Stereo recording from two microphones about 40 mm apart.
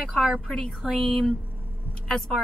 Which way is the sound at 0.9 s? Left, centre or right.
Centre.